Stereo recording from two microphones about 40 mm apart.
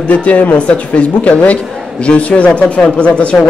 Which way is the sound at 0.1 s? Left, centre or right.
Left.